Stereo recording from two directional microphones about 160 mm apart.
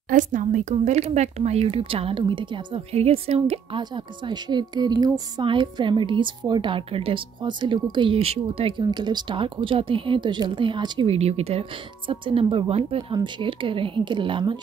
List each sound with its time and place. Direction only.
0.1 s speech: 55° right (ahead or behind); by 14.6 s 30° right (ahead or behind)